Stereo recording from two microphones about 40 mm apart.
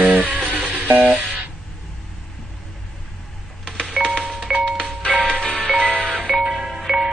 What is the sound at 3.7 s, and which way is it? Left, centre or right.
Doorbell, centre.